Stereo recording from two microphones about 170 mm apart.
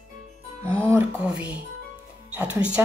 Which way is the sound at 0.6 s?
15° right (ahead or behind).